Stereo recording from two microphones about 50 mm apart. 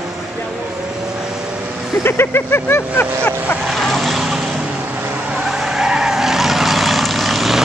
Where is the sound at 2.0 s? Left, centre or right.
Left.